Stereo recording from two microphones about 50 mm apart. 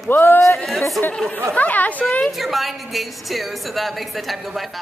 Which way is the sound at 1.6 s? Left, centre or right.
Left.